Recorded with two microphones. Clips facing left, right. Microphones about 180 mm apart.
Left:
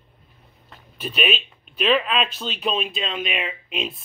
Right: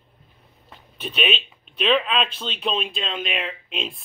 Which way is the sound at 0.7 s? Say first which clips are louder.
Left 1 dB; centre (ahead or behind).